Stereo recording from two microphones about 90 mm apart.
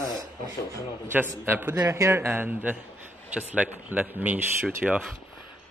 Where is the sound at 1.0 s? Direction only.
25° right (ahead or behind).